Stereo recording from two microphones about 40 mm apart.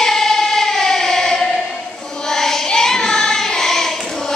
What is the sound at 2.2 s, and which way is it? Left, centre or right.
Child singing, centre.